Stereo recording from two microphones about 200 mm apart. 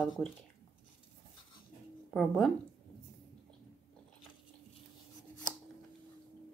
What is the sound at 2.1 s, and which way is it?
Speech, 5° left (ahead or behind).